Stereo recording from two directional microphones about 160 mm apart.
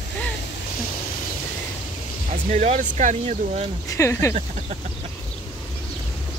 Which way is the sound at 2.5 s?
45° right (ahead or behind).